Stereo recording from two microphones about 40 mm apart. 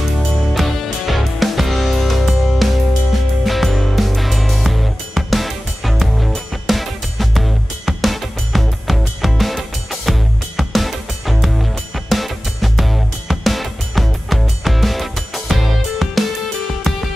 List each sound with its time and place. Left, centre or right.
0.6 s music: centre